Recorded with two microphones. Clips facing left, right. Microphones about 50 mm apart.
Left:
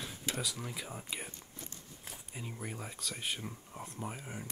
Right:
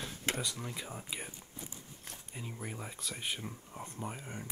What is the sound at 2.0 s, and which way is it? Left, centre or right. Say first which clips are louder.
Speech: left 1 dB; centre.